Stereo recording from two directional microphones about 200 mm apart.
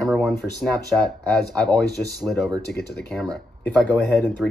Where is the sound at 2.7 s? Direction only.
55° left (ahead or behind).